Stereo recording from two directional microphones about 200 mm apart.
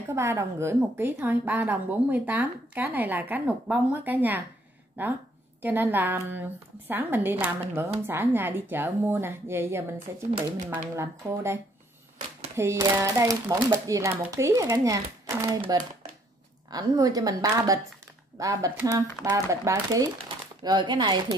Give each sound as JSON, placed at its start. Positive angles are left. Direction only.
{"t": 0.1, "sound": "a woman's voice", "side_deg": -15}